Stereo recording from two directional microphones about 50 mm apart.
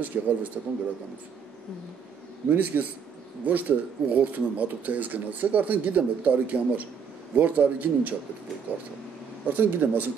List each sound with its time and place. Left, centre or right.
0.2 s a man's voice: right
2.5 s speech: right